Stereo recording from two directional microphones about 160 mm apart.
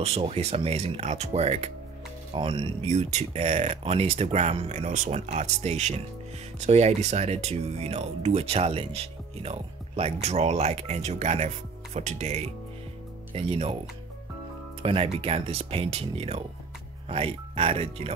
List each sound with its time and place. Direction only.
0.0 s speech: 40° right (ahead or behind)
2.9 s speech: 45° right (ahead or behind)
14.8 s speech: 40° right (ahead or behind)